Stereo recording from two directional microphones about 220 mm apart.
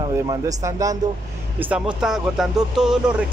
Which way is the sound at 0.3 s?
15° right (ahead or behind).